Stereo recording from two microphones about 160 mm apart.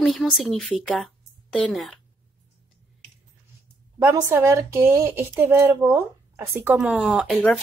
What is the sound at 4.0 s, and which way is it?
Speech, 15° right (ahead or behind).